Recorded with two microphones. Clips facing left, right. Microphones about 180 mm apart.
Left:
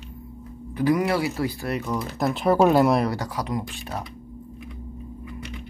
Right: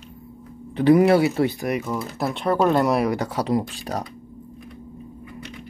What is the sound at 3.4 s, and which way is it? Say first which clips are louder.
Speech: right 6 dB; 35° right (ahead or behind).